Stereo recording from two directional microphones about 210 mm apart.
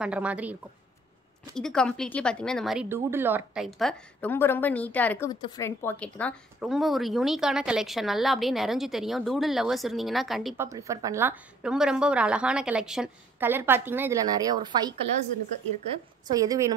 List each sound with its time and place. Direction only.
0.0 s a woman's voice: 5° right (ahead or behind)
10.6 s a woman's voice: 15° right (ahead or behind)
16.3 s a woman's voice: 15° right (ahead or behind)